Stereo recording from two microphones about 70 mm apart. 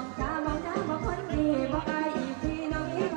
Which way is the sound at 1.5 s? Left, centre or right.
Centre.